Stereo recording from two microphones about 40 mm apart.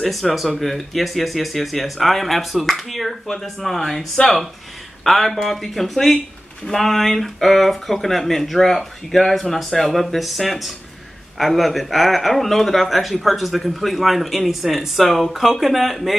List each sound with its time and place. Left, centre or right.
0.0 s speech: centre